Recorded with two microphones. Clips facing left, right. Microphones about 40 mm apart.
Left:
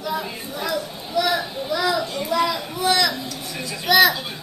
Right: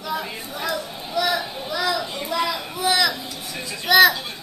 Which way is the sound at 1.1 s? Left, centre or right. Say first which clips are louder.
Left 1 dB; centre.